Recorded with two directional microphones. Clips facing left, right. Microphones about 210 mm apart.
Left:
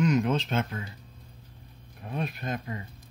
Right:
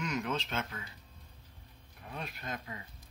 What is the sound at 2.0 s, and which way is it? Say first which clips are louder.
Speech: left 10 dB; 20° left (ahead or behind).